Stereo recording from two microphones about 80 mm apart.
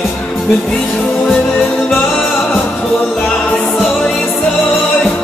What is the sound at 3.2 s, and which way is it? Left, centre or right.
Music, centre.